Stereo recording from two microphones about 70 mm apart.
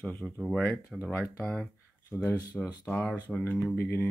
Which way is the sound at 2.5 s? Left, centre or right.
Centre.